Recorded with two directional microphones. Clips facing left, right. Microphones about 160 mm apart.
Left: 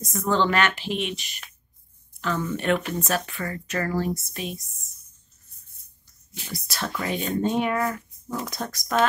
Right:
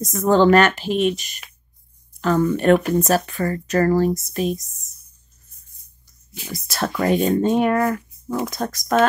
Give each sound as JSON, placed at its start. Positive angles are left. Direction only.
{"t": 0.0, "sound": "speech", "side_deg": -40}
{"t": 6.5, "sound": "speech", "side_deg": -45}